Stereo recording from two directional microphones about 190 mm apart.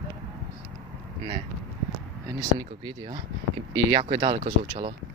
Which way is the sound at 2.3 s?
25° right (ahead or behind).